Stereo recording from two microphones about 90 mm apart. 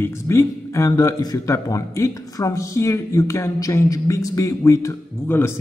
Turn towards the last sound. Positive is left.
turn(degrees=30)  # may be behind; listen again after turning